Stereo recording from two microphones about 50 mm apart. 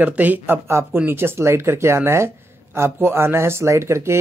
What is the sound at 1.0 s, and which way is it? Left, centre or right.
Speech, right.